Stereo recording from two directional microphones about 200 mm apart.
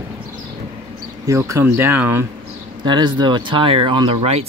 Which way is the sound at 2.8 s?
25° right (ahead or behind).